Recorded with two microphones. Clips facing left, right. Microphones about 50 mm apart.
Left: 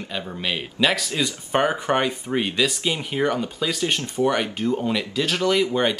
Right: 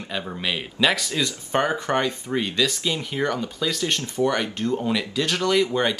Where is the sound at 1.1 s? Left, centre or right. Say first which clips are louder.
Left 1 dB; centre.